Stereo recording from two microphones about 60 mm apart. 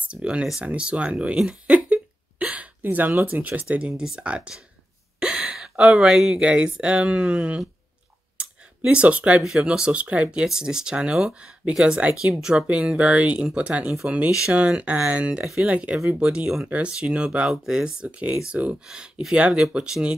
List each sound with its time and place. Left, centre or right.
0.1 s speech: centre
1.7 s a sound: right
3.3 s speech: right
5.2 s gasp: centre
6.4 s speech: centre
8.9 s speech: right
9.4 s speech: centre; by 10.4 s right
10.4 s speech: centre